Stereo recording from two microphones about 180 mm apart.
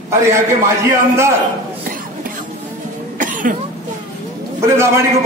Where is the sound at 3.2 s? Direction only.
45° right (ahead or behind).